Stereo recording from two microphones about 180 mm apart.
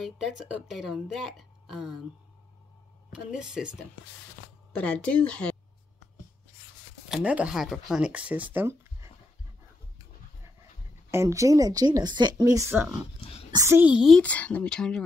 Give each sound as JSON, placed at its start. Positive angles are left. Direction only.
{"t": 0.0, "sound": "speech", "side_deg": 0}
{"t": 3.1, "sound": "speech", "side_deg": -5}
{"t": 4.7, "sound": "speech", "side_deg": 5}
{"t": 7.1, "sound": "speech", "side_deg": -5}
{"t": 11.1, "sound": "speech", "side_deg": -15}